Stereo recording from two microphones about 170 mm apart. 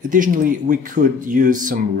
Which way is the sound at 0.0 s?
50° right (ahead or behind).